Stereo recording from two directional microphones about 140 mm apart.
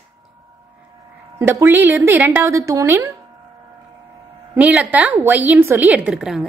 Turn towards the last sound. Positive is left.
turn(degrees=-5)  # may be behind; listen again after turning